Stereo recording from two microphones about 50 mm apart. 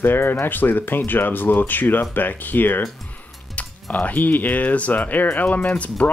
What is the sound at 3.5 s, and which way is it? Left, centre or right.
Speech, left.